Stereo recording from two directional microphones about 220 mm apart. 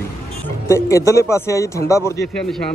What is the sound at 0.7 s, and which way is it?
Speech, 15° left (ahead or behind).